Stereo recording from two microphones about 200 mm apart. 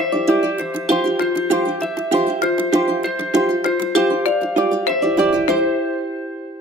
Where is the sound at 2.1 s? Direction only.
25° right (ahead or behind).